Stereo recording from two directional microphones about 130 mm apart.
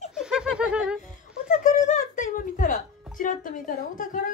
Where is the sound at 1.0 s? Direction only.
85° left.